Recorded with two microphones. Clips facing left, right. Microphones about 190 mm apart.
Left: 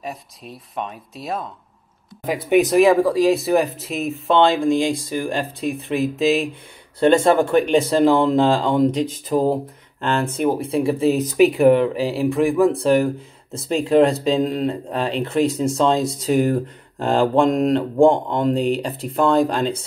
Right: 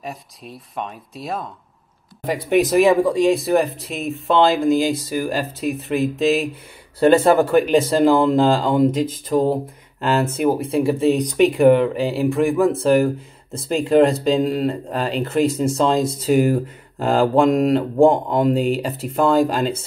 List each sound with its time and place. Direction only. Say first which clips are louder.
0.0 s speech: left 1 dB; centre (ahead or behind)